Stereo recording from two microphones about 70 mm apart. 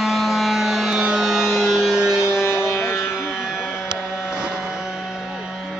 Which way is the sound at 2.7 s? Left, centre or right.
Left.